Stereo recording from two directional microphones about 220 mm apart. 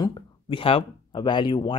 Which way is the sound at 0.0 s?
20° left (ahead or behind).